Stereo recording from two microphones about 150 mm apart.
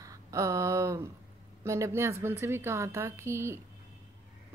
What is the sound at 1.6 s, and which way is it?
Speech, 20° right (ahead or behind).